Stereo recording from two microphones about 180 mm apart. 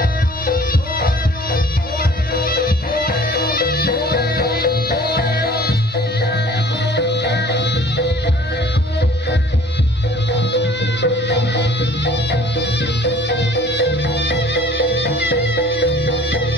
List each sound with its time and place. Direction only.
0.5 s music: 50° left (ahead or behind); by 8.1 s 75° left (ahead or behind)
10.3 s music: 75° left (ahead or behind)